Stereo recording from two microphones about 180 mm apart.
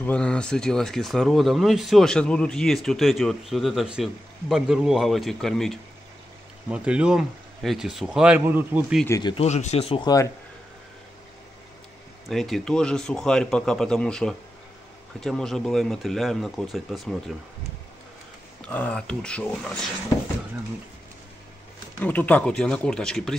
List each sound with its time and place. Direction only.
0.0 s speech: 5° left (ahead or behind); by 8.8 s 10° right (ahead or behind)
9.2 s speech: 30° left (ahead or behind)
12.3 s speech: centre (ahead or behind)
18.6 s speech: 5° left (ahead or behind)
22.0 s speech: 10° left (ahead or behind)